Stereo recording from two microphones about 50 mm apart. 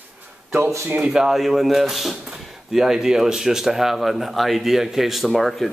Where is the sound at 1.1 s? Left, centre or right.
Centre.